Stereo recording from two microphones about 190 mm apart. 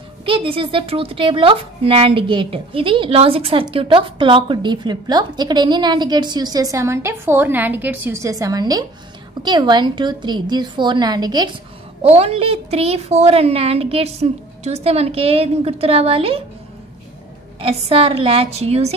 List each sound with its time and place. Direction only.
0.2 s speech: 30° right (ahead or behind)
12.0 s a woman's voice: 30° right (ahead or behind)
17.6 s a woman's voice: 30° right (ahead or behind)